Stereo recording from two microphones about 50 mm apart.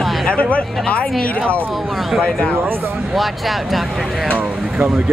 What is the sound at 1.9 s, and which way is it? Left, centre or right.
Speech, centre.